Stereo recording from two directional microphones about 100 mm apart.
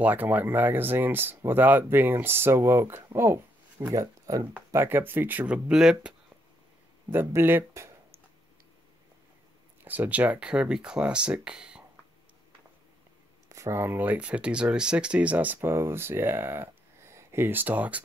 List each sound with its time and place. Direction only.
0.0 s speech: 15° right (ahead or behind)
4.0 s speech: 35° right (ahead or behind)
4.7 s speech: 20° right (ahead or behind)
5.7 s speech: 5° right (ahead or behind)
7.1 s speech: 20° right (ahead or behind)
9.8 s speech: 15° right (ahead or behind)
13.5 s speech: 30° right (ahead or behind)